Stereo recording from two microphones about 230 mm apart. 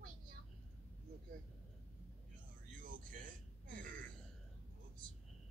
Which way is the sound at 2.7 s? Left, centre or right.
Right.